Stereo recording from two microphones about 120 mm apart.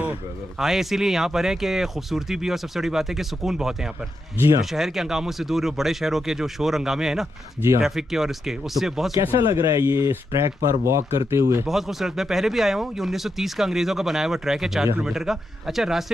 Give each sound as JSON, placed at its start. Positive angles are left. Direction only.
{"t": 0.6, "sound": "speech", "side_deg": -5}
{"t": 9.2, "sound": "speech", "side_deg": -20}
{"t": 11.6, "sound": "speech", "side_deg": 0}